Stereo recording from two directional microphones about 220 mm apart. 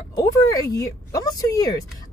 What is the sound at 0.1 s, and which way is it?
A woman's voice, 15° left (ahead or behind).